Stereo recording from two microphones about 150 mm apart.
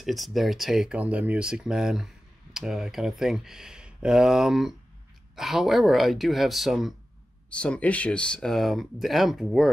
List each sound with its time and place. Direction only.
0.0 s speech: centre (ahead or behind)